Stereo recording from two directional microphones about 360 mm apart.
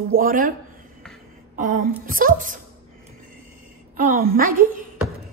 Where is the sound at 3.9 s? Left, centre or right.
Right.